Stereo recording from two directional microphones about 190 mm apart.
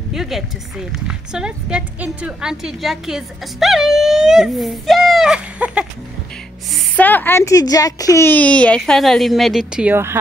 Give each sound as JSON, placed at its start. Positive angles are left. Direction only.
{"t": 0.1, "sound": "a woman's voice", "side_deg": 0}
{"t": 6.7, "sound": "a child's voice", "side_deg": 10}